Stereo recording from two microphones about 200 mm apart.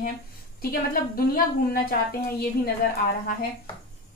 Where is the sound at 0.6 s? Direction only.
50° left (ahead or behind).